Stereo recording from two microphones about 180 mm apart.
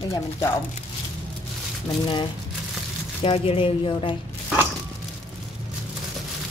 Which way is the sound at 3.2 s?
30° left (ahead or behind).